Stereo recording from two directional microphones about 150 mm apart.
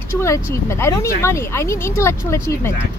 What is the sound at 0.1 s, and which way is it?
Speech, 20° left (ahead or behind).